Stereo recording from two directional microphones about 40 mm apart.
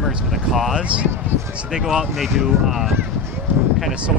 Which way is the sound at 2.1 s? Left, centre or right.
Centre.